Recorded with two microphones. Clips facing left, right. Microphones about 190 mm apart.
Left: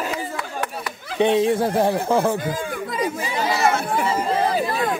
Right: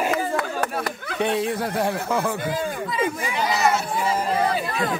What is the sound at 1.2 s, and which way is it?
Speech, 25° left (ahead or behind).